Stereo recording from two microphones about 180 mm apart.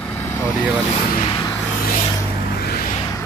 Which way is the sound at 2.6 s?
60° left (ahead or behind).